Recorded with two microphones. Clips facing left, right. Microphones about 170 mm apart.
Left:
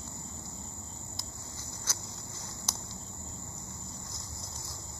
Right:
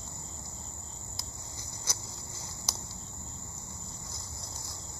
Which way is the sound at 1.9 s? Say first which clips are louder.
Right 2 dB; 15° right (ahead or behind).